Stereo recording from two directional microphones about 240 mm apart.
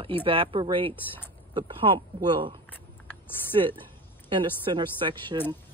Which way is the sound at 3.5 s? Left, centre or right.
Centre.